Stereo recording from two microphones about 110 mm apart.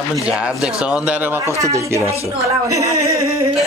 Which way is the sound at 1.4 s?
30° right (ahead or behind).